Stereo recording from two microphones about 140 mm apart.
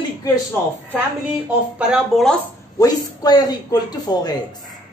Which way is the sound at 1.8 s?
5° right (ahead or behind).